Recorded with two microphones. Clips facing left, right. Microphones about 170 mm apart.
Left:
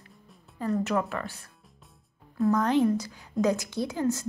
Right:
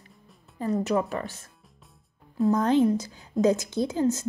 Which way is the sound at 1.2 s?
20° right (ahead or behind).